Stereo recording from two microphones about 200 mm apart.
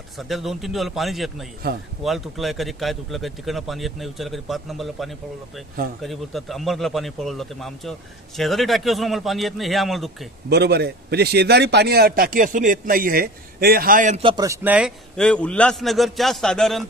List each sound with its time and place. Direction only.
0.3 s a man's voice: centre (ahead or behind)
10.5 s a man's voice: 55° right (ahead or behind); by 14.2 s 40° right (ahead or behind)
14.2 s speech: 20° right (ahead or behind)
15.1 s a man's voice: 5° left (ahead or behind)